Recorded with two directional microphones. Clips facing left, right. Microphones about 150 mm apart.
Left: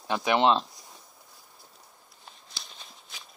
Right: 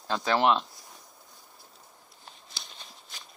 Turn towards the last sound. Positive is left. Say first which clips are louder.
# even
turn(degrees=0)  # may be behind; listen again after turning